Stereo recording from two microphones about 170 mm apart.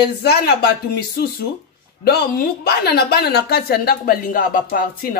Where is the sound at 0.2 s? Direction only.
70° left (ahead or behind).